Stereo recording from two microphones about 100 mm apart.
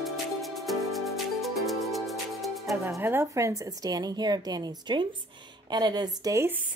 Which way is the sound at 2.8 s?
25° right (ahead or behind).